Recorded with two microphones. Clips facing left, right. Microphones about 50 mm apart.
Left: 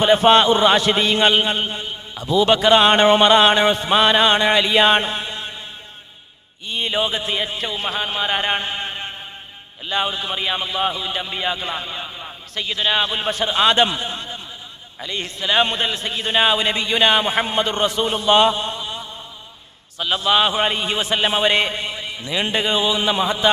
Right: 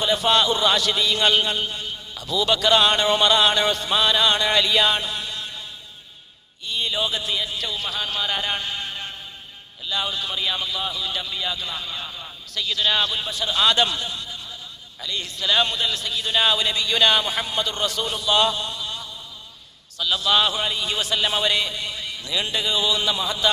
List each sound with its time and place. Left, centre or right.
0.0 s a man's voice: left
6.7 s a man's voice: left
13.2 s a man's voice: left
13.5 s a man's voice: left